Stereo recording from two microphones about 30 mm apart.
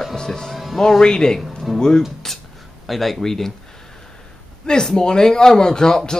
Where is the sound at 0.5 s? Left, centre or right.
Centre.